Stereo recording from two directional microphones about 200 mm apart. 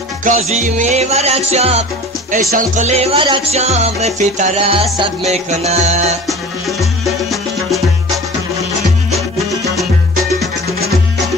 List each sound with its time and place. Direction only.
0.5 s music: 35° right (ahead or behind)
6.8 s music: centre (ahead or behind)